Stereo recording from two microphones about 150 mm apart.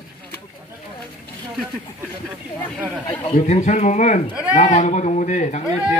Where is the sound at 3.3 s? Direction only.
45° left (ahead or behind).